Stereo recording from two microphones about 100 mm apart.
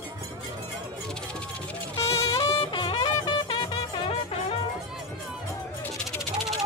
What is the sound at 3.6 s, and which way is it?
Music, 70° left (ahead or behind).